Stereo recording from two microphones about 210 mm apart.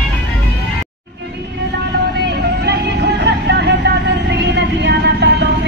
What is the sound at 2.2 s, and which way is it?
Vehicle, 50° right (ahead or behind).